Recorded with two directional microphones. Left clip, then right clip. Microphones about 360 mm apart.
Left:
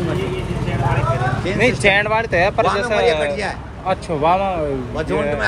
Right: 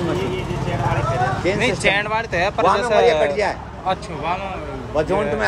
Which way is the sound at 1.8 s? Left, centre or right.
Centre.